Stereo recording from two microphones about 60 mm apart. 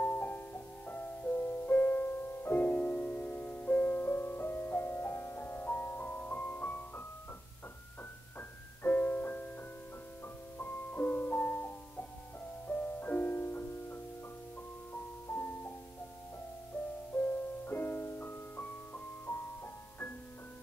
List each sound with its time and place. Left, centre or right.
0.0 s music: left
8.4 s piano: left
10.2 s music: left
17.1 s music: left